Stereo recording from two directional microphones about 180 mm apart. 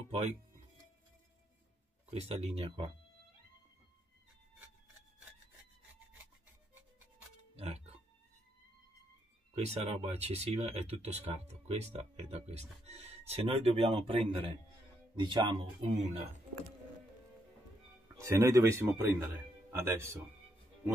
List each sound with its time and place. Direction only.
2.0 s speech: 35° right (ahead or behind)
7.5 s music: 35° right (ahead or behind)
9.6 s speech: 35° right (ahead or behind)
18.0 s speech: 15° right (ahead or behind)